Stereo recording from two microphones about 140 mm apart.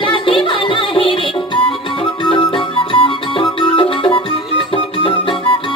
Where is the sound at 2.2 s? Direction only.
35° left (ahead or behind).